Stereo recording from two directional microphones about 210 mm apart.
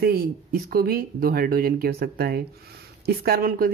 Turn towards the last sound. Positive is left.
turn(degrees=-45)  # may be behind; listen again after turning